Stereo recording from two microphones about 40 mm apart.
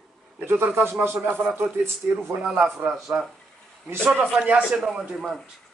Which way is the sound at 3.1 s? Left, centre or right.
Right.